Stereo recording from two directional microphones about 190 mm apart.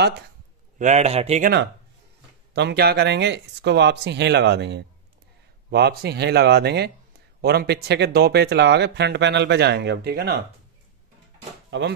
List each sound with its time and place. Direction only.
0.7 s a man's voice: 40° right (ahead or behind)
2.5 s speech: 60° right (ahead or behind)
11.7 s speech: 70° right (ahead or behind)